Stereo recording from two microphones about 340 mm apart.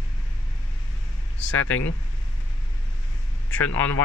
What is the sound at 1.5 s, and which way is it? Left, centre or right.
Speech, left.